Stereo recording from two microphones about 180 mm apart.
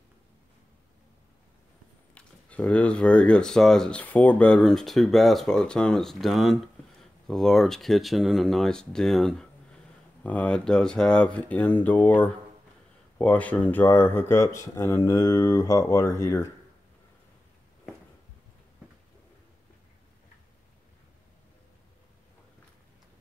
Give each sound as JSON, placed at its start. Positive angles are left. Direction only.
{"t": 2.1, "sound": "speech", "side_deg": 5}